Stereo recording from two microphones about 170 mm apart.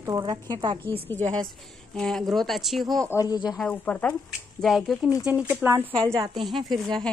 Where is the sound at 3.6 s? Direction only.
10° left (ahead or behind).